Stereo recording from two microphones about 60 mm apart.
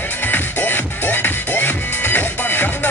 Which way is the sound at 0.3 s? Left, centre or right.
Left.